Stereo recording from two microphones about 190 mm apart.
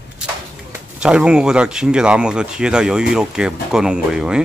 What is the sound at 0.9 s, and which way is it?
Speech, 5° right (ahead or behind).